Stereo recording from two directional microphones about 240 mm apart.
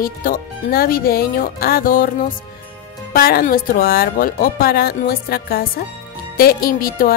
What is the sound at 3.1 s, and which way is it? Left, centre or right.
A woman's voice, left.